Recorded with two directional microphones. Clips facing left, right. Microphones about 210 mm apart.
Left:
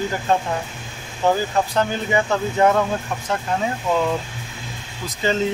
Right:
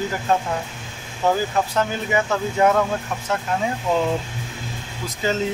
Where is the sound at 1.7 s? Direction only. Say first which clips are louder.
Left 1 dB; 5° right (ahead or behind).